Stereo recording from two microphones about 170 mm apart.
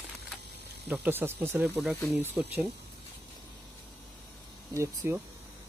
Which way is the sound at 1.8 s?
Centre (ahead or behind).